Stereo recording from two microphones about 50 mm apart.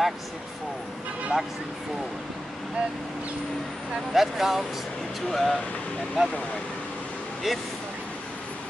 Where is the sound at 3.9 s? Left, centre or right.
Centre.